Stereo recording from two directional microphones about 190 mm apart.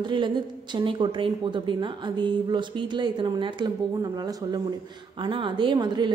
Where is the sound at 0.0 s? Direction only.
25° right (ahead or behind).